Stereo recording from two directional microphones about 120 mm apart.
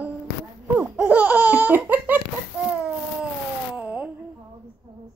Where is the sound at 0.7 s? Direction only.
15° right (ahead or behind).